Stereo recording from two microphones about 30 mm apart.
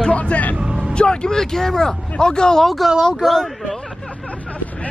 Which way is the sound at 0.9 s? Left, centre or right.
Left.